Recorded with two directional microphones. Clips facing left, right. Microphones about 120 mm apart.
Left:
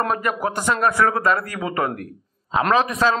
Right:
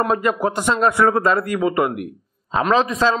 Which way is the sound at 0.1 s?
25° right (ahead or behind).